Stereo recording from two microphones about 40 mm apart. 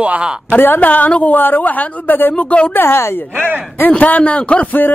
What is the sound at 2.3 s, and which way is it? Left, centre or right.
Speech, left.